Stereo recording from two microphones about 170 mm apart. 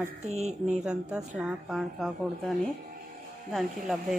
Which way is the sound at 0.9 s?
5° right (ahead or behind).